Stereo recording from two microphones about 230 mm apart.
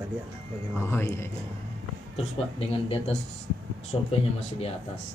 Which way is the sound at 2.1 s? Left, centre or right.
Left.